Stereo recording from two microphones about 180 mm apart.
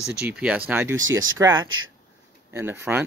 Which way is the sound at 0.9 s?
90° right.